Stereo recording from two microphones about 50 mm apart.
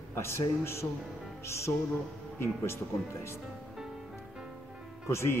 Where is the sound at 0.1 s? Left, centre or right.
Left.